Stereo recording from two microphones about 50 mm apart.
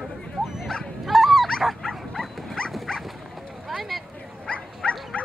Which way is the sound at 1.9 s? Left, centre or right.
Centre.